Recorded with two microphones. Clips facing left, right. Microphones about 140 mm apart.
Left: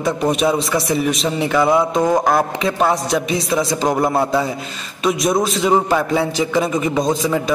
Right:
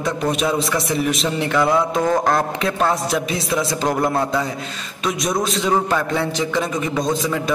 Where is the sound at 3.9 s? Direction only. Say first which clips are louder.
Left 2 dB; 10° left (ahead or behind).